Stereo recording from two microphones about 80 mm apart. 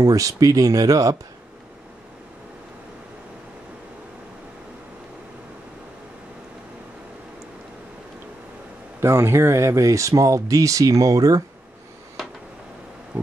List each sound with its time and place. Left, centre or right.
0.0 s speech: right
9.0 s speech: right
13.1 s insect: centre